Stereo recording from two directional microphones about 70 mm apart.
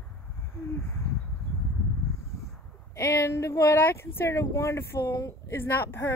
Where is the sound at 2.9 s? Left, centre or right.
Left.